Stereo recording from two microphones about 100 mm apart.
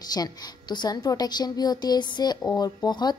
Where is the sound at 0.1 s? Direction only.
45° left (ahead or behind).